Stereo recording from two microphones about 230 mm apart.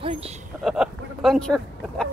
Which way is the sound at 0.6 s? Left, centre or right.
Centre.